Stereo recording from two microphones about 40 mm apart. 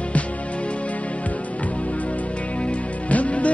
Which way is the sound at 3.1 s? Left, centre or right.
Left.